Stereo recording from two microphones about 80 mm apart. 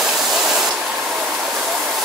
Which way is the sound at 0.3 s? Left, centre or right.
Centre.